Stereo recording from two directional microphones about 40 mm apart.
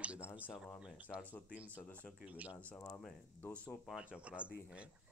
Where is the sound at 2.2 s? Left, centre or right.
Right.